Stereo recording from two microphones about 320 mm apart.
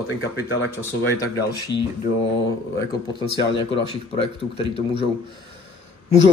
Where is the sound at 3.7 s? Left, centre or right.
Centre.